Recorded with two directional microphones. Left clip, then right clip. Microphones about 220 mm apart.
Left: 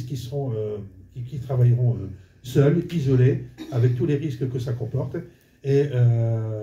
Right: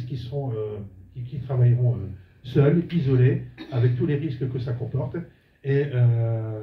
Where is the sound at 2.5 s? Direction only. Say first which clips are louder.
Left 1 dB; 15° left (ahead or behind).